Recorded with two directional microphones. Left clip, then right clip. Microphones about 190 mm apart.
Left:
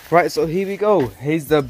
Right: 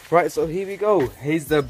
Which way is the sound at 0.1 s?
35° left (ahead or behind).